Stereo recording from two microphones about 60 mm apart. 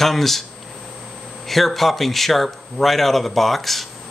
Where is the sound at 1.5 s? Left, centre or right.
Centre.